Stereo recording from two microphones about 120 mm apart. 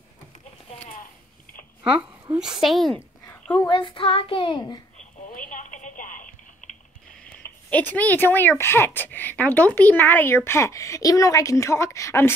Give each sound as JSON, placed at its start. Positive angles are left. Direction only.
{"t": 2.3, "sound": "a woman's voice", "side_deg": -5}
{"t": 3.6, "sound": "a child's voice", "side_deg": 45}
{"t": 5.5, "sound": "telephone", "side_deg": 90}
{"t": 7.7, "sound": "speech", "side_deg": 15}